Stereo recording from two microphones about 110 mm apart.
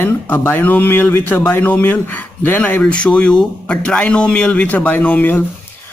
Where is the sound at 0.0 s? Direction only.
20° left (ahead or behind).